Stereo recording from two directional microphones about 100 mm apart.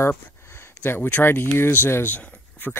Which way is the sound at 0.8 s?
20° left (ahead or behind).